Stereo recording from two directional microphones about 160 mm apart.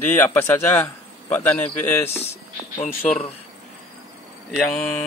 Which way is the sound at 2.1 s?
40° left (ahead or behind).